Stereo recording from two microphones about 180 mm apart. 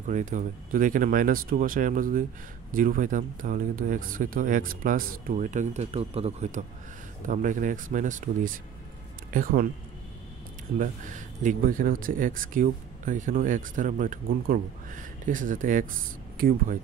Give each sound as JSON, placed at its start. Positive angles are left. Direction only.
{"t": 0.1, "sound": "speech", "side_deg": -45}
{"t": 10.8, "sound": "speech", "side_deg": -45}